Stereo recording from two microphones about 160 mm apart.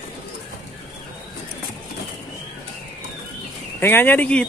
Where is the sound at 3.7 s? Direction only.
10° left (ahead or behind).